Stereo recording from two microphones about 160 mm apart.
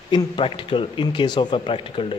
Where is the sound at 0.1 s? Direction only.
30° left (ahead or behind).